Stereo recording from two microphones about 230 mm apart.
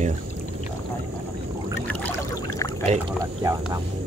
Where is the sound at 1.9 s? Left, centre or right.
Centre.